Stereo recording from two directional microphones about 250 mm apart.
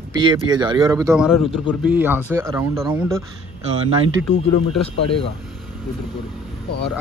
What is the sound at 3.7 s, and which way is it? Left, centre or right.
Speech, right.